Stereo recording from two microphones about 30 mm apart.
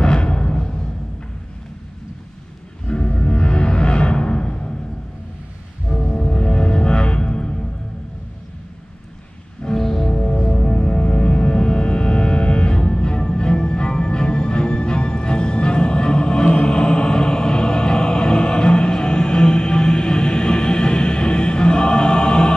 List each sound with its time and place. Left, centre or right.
0.0 s music: left
2.9 s music: left
6.1 s music: left
9.6 s music: centre
10.0 s music: left